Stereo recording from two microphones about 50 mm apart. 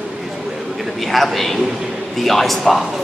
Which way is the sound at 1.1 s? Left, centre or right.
Centre.